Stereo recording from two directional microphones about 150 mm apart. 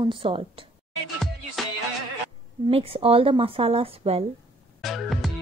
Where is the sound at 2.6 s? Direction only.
40° right (ahead or behind).